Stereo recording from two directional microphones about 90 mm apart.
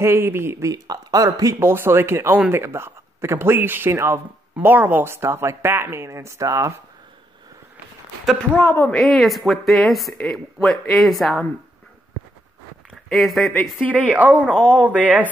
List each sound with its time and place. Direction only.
0.0 s speech: 30° right (ahead or behind)
0.8 s speech: 45° right (ahead or behind)
8.5 s speech: 20° left (ahead or behind)
8.9 s speech: centre (ahead or behind)
13.1 s speech: centre (ahead or behind)
13.8 s speech: 15° right (ahead or behind)